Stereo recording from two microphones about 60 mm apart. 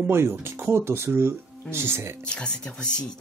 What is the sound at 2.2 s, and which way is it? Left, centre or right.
Speech, centre.